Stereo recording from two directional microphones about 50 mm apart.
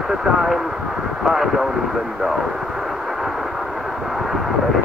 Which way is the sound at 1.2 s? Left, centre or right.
Centre.